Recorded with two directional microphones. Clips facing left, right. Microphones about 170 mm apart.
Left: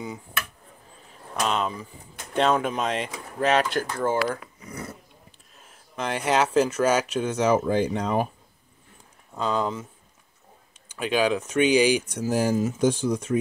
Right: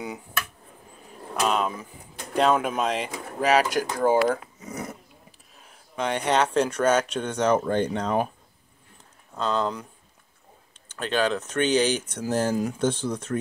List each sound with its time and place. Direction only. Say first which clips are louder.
1.4 s speech: right 1 dB; 5° right (ahead or behind)
4.3 s dog: right 4 dB; 25° right (ahead or behind)
5.6 s speech: right 2 dB; centre (ahead or behind)
9.4 s speech: even; 10° left (ahead or behind)
10.9 s speech: left 2 dB; 10° left (ahead or behind)